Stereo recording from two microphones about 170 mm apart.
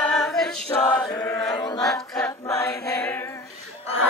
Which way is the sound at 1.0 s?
15° left (ahead or behind).